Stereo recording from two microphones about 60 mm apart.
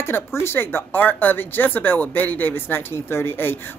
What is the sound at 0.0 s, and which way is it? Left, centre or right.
A woman's voice, left.